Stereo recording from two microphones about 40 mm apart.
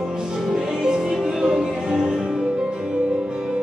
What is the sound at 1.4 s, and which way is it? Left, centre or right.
Music, centre.